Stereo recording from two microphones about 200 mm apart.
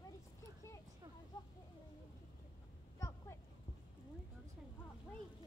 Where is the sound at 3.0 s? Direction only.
15° left (ahead or behind).